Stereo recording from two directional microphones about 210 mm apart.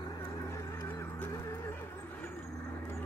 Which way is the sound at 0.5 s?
15° left (ahead or behind).